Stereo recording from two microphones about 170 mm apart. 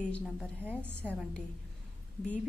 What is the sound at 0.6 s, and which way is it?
Speech, 10° right (ahead or behind).